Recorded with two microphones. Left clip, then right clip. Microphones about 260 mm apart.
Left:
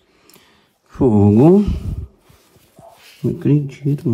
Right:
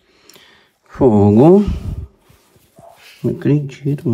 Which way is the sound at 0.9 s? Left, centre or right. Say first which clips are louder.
Right 3 dB; centre.